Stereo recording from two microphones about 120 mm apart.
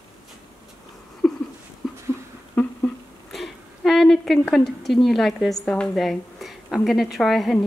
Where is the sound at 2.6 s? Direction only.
15° left (ahead or behind).